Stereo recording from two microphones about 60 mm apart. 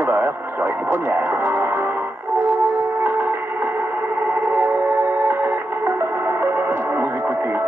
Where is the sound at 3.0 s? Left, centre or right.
Right.